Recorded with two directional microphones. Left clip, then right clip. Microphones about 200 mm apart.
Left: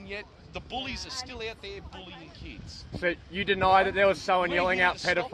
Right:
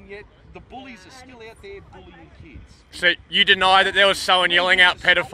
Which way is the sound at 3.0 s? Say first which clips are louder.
Right 12 dB; 10° right (ahead or behind).